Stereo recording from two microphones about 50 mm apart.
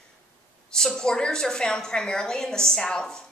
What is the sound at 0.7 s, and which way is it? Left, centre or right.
A woman's voice, centre.